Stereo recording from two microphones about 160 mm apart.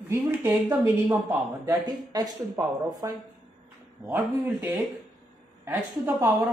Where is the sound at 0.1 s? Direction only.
15° right (ahead or behind).